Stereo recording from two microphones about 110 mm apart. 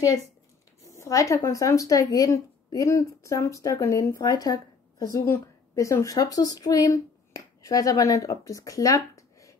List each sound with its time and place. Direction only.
0.9 s a woman's voice: 30° left (ahead or behind)